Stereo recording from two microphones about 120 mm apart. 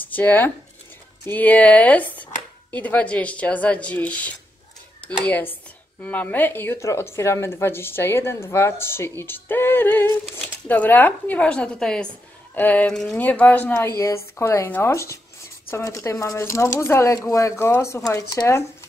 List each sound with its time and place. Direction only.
0.0 s speech: 15° left (ahead or behind)